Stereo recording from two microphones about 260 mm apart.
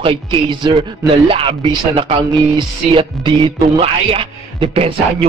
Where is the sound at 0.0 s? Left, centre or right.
Centre.